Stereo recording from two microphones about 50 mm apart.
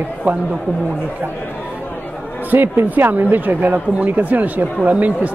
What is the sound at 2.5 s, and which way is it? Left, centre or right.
Speech, right.